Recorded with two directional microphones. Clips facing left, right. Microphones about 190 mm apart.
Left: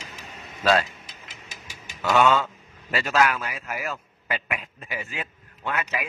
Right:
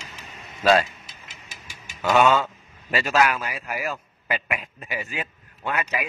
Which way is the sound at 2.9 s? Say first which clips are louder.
Right 1 dB; 15° right (ahead or behind).